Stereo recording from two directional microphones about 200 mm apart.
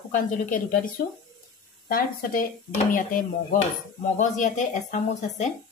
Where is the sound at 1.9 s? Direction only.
45° left (ahead or behind).